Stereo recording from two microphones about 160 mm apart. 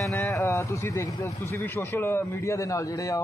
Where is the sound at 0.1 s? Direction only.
15° left (ahead or behind).